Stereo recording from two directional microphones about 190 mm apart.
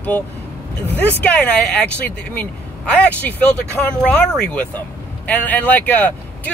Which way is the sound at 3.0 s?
5° left (ahead or behind).